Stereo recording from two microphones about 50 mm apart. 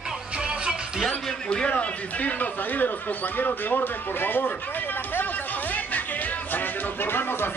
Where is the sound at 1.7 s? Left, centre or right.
Left.